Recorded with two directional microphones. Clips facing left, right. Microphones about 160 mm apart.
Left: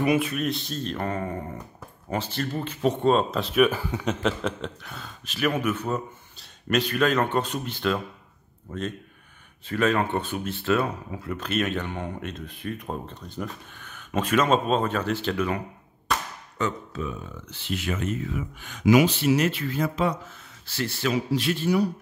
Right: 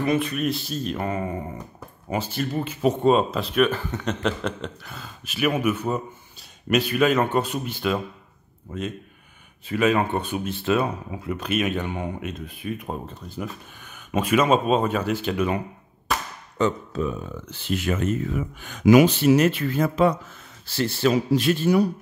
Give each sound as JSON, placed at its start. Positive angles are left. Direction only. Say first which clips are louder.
{"t": 0.0, "sound": "speech", "louder": "even", "side_deg": 10}
{"t": 16.5, "sound": "speech", "louder": "right 6 dB", "side_deg": -35}
{"t": 20.6, "sound": "speech", "louder": "right 6 dB", "side_deg": -35}
{"t": 21.3, "sound": "speech", "louder": "right 4 dB", "side_deg": -45}